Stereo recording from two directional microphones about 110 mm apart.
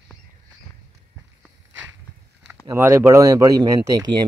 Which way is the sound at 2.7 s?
25° right (ahead or behind).